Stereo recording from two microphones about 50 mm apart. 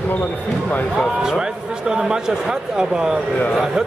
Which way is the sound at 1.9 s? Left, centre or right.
Centre.